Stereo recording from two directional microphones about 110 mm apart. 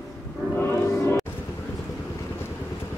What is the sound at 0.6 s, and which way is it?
Music, 20° left (ahead or behind).